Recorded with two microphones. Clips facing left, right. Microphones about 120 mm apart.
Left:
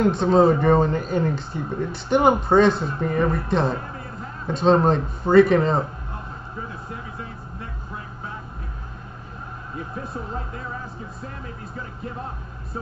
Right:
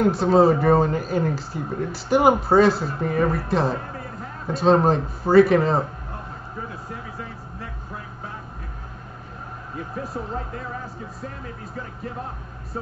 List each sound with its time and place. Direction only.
0.0 s speech: 5° right (ahead or behind)
10.1 s speech: 45° right (ahead or behind)